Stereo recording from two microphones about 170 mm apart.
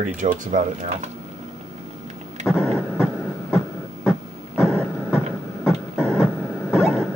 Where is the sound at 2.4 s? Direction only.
Centre (ahead or behind).